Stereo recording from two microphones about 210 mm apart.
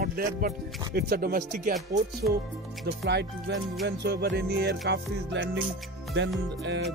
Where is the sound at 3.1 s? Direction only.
55° right (ahead or behind).